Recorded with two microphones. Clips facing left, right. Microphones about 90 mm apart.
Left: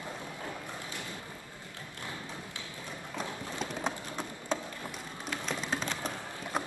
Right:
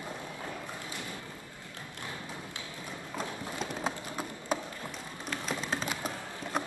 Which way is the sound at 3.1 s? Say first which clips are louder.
Right 1 dB; 5° right (ahead or behind).